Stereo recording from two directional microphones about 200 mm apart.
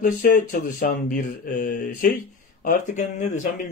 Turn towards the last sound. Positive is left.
turn(degrees=35)  # may be behind; listen again after turning